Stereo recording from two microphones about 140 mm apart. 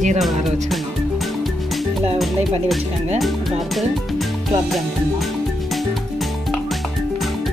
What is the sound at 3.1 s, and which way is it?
Speech, centre (ahead or behind).